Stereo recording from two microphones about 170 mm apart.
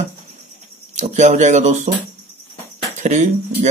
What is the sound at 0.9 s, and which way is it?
Speech, 40° right (ahead or behind).